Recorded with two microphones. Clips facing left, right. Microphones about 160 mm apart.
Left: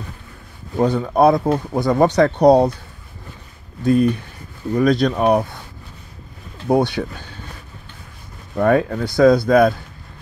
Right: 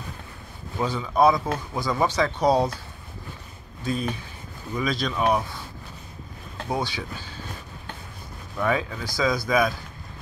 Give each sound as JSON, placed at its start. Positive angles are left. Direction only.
{"t": 0.7, "sound": "speech", "side_deg": 55}
{"t": 3.8, "sound": "speech", "side_deg": 60}
{"t": 6.7, "sound": "speech", "side_deg": 60}
{"t": 8.5, "sound": "speech", "side_deg": 60}